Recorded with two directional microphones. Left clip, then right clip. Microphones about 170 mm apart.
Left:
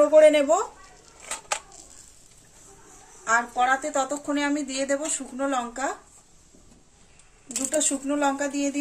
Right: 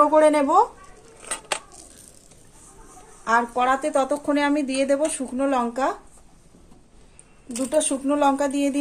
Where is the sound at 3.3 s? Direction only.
45° right (ahead or behind).